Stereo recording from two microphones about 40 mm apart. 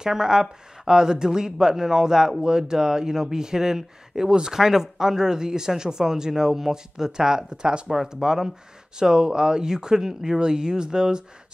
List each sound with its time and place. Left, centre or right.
0.0 s speech: centre
7.9 s speech: centre